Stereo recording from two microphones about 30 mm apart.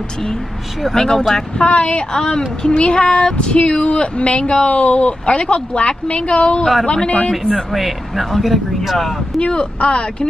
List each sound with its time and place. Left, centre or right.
0.9 s a woman's voice: left
1.7 s speech: left
2.1 s a woman's voice: left
2.7 s a woman's voice: left
3.3 s a woman's voice: left
4.6 s speech: left
5.3 s a woman's voice: left
7.7 s speech: centre
9.5 s a woman's voice: left